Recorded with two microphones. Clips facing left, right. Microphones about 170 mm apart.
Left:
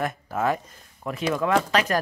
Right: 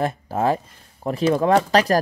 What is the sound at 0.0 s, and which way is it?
A man's voice, 30° right (ahead or behind).